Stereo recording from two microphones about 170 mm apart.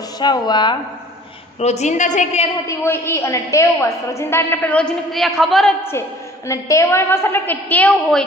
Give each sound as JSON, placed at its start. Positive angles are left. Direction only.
{"t": 0.2, "sound": "a woman's voice", "side_deg": 25}
{"t": 1.6, "sound": "a woman's voice", "side_deg": 40}
{"t": 2.6, "sound": "a woman's voice", "side_deg": 15}
{"t": 5.9, "sound": "a woman's voice", "side_deg": 15}